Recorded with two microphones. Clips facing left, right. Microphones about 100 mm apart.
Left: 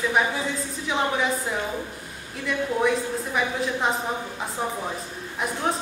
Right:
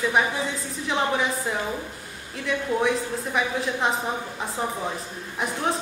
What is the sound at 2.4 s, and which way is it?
A woman's voice, centre (ahead or behind).